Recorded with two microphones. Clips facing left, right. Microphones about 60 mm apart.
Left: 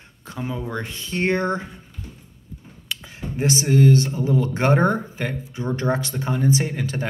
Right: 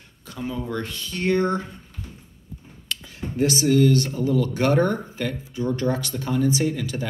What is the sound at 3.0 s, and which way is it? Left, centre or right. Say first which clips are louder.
Speech: right 1 dB; left.